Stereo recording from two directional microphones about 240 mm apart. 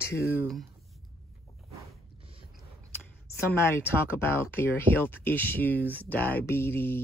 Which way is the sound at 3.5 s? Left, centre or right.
Centre.